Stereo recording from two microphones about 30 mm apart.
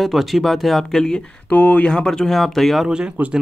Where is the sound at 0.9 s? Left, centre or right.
Centre.